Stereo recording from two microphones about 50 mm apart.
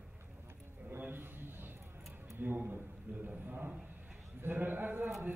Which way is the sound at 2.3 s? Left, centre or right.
Right.